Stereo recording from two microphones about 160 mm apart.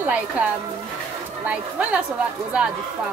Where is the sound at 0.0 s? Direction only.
10° right (ahead or behind).